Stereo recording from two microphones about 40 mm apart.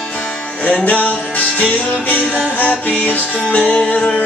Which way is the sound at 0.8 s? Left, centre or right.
Left.